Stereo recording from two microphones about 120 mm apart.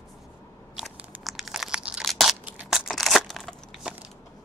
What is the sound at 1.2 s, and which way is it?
Crunch, centre (ahead or behind).